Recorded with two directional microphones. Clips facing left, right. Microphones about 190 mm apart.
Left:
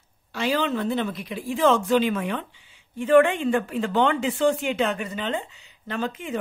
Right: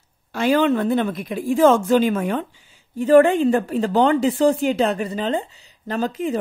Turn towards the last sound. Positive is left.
turn(degrees=-40)  # may be behind; listen again after turning